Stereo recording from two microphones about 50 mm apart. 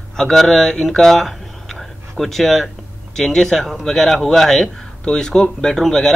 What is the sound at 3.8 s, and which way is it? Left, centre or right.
Speech, centre.